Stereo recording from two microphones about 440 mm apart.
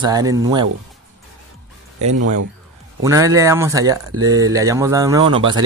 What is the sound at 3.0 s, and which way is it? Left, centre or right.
Speech, centre.